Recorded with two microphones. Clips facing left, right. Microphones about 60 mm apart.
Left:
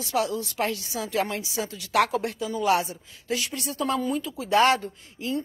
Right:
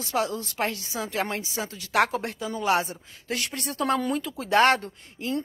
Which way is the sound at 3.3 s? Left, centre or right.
Right.